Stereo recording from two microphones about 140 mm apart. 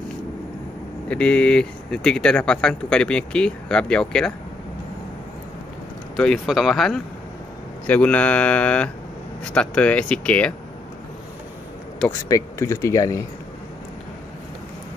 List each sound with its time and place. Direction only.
1.0 s speech: 10° left (ahead or behind)
6.1 s speech: 5° left (ahead or behind)
12.1 s speech: 20° left (ahead or behind)